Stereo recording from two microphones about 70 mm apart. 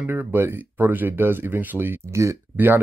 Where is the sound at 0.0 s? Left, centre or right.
Right.